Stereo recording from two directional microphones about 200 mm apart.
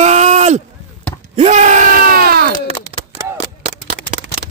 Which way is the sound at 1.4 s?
35° right (ahead or behind).